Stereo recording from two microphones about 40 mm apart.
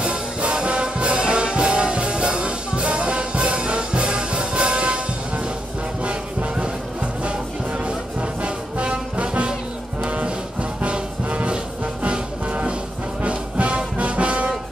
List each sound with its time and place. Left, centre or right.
0.0 s music: right
13.2 s brass instrument: right